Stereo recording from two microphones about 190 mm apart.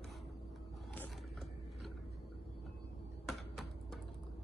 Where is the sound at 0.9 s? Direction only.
5° left (ahead or behind).